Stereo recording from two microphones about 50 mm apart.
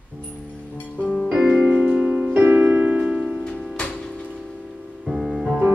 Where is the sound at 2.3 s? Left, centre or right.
Right.